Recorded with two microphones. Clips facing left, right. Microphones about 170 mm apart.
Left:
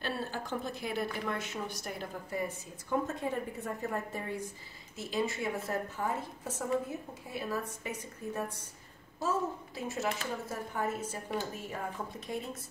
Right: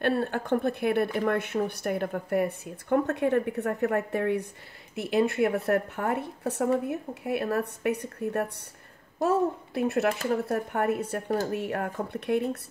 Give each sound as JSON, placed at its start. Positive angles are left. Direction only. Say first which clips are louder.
{"t": 0.0, "sound": "speech", "louder": "right 10 dB", "side_deg": -60}